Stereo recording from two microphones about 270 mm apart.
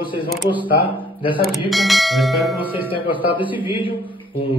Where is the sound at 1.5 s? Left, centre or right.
Centre.